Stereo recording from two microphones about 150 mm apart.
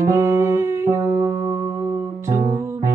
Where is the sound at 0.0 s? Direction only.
20° right (ahead or behind).